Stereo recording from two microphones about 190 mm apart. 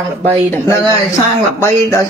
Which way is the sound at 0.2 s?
10° left (ahead or behind).